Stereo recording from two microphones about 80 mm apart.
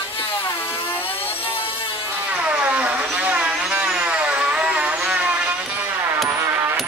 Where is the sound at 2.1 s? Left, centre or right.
Centre.